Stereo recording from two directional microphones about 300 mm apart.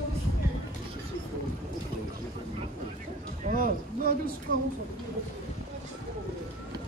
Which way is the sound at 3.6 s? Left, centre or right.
Right.